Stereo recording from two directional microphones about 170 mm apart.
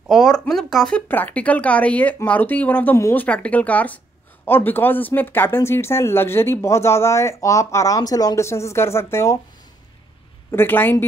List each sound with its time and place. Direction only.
0.1 s speech: centre (ahead or behind); by 9.4 s 15° left (ahead or behind)
10.5 s speech: 10° left (ahead or behind)